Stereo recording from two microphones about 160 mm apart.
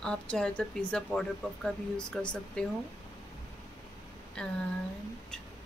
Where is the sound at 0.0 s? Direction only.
5° left (ahead or behind).